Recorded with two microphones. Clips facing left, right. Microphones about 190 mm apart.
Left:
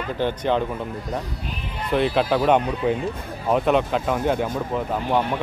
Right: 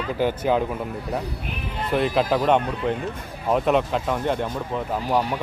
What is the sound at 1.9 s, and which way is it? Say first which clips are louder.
A man's voice: left 1 dB; centre (ahead or behind).